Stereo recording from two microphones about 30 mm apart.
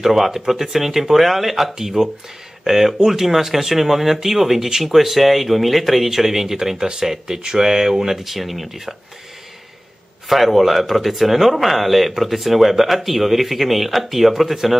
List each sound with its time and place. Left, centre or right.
0.0 s speech: centre
6.0 s speech: centre
8.2 s speech: centre
10.2 s speech: centre